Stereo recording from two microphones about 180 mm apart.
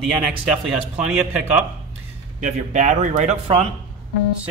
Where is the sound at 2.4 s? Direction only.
40° right (ahead or behind).